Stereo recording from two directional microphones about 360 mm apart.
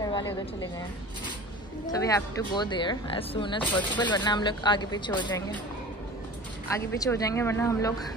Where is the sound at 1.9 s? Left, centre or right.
Centre.